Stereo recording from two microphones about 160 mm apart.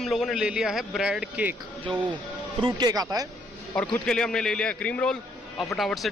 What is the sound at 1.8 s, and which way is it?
Speech, 30° right (ahead or behind).